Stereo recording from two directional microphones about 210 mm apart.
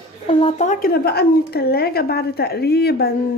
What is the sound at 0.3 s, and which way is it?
Speech, 25° left (ahead or behind).